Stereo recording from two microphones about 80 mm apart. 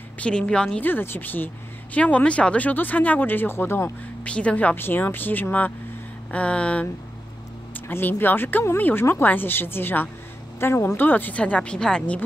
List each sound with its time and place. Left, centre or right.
0.2 s speech: centre
0.8 s speech: left
4.2 s speech: centre
7.9 s speech: left; by 12.2 s centre